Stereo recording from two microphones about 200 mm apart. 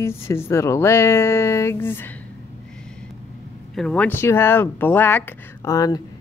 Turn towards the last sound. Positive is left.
turn(degrees=20)  # may be behind; listen again after turning